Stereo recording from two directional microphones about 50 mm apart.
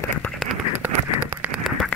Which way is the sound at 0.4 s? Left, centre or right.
Centre.